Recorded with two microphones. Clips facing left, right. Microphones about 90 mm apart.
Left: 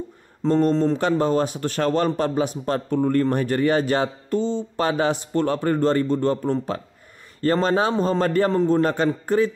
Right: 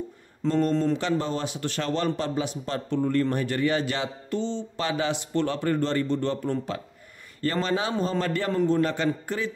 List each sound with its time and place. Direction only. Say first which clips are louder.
0.4 s a man's voice: left 5 dB; 40° left (ahead or behind)